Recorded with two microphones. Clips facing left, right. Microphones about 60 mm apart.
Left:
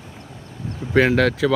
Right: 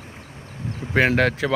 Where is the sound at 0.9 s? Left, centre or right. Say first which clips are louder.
Left 2 dB; right.